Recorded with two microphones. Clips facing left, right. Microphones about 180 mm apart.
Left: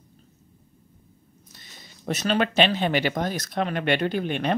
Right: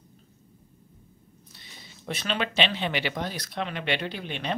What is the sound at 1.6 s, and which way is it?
Speech, 45° left (ahead or behind).